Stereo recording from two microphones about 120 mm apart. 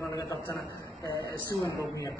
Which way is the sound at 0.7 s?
30° left (ahead or behind).